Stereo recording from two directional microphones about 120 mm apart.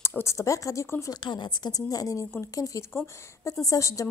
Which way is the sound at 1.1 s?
40° left (ahead or behind).